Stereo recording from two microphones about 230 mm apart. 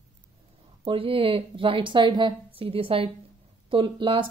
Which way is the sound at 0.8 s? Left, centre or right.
Right.